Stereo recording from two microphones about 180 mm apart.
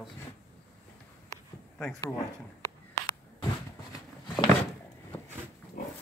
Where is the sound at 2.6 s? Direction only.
20° left (ahead or behind).